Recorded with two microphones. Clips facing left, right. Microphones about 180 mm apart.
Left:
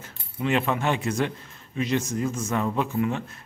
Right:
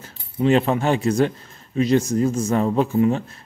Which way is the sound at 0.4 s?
35° right (ahead or behind).